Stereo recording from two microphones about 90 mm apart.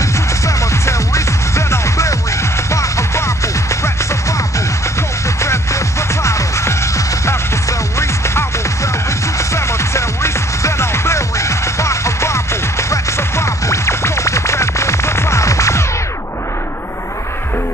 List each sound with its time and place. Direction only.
0.0 s music: 35° left (ahead or behind)
5.4 s music: 35° left (ahead or behind)